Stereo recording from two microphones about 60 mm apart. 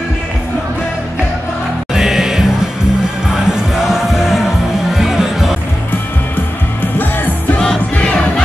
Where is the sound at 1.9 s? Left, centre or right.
Centre.